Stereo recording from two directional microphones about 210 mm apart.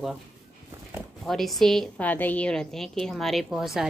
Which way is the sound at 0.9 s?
Centre (ahead or behind).